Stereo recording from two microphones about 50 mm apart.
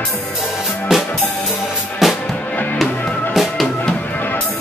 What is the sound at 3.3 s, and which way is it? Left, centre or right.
Music, centre.